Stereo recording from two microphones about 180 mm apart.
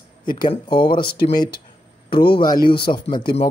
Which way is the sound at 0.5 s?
25° left (ahead or behind).